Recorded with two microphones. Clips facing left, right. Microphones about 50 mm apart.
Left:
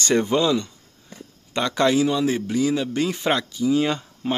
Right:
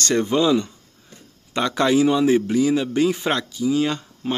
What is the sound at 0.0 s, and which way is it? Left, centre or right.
Speech, centre.